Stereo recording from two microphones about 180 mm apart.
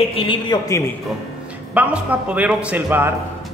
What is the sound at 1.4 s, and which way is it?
A man's voice, 5° right (ahead or behind).